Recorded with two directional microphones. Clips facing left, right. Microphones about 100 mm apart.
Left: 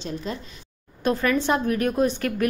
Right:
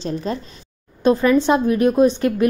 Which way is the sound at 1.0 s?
20° right (ahead or behind).